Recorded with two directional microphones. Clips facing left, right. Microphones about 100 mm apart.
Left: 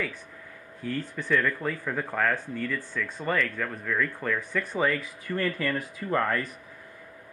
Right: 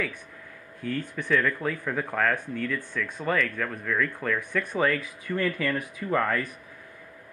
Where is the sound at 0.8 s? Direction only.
10° left (ahead or behind).